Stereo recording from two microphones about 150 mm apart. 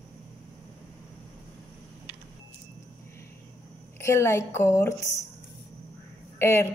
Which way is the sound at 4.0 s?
20° left (ahead or behind).